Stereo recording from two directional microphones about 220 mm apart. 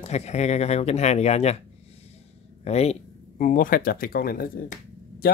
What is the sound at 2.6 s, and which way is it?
Speech, 30° left (ahead or behind).